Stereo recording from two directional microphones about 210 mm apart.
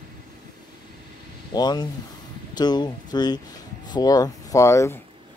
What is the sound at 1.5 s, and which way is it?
Speech, 20° left (ahead or behind).